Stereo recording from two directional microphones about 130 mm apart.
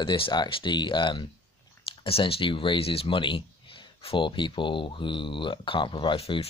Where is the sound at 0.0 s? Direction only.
40° left (ahead or behind).